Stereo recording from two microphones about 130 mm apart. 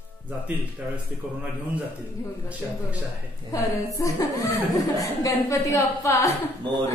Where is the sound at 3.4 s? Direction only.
25° left (ahead or behind).